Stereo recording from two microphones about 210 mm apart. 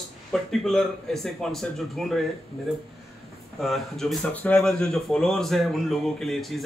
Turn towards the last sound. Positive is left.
turn(degrees=0)  # may be behind; listen again after turning